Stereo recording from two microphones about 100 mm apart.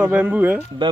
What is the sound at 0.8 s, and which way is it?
Speech, 50° right (ahead or behind).